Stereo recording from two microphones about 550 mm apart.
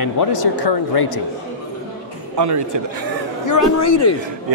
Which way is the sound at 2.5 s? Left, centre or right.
Right.